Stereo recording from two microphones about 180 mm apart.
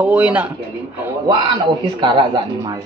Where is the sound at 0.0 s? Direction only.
10° right (ahead or behind).